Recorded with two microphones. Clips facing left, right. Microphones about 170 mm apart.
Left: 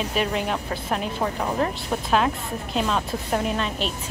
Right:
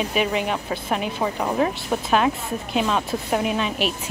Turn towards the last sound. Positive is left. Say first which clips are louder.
# right 3 dB
turn(degrees=-5)  # may be behind; listen again after turning